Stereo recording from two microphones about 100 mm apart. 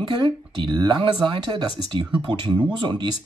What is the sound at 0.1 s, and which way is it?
Speech, 50° right (ahead or behind).